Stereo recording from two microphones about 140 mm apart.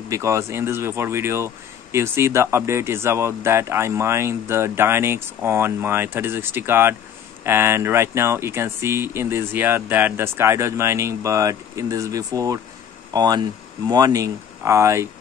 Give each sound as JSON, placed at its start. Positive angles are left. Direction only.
{"t": 0.1, "sound": "speech", "side_deg": -20}